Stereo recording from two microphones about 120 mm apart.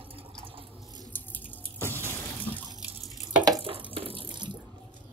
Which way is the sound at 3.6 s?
45° right (ahead or behind).